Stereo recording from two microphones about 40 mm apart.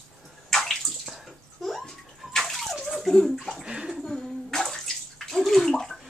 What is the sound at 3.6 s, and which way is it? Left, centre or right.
Bathtub, centre.